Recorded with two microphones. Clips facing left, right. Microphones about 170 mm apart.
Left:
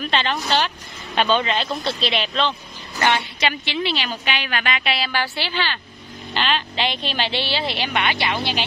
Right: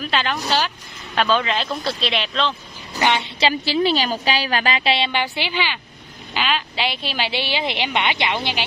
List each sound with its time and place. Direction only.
0.0 s a woman's voice: centre (ahead or behind)
3.0 s a woman's voice: 15° right (ahead or behind)
3.3 s a woman's voice: 35° right (ahead or behind); by 8.6 s 15° right (ahead or behind)